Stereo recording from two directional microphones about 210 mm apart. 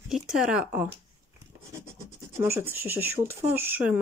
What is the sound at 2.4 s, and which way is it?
Speech, 10° right (ahead or behind).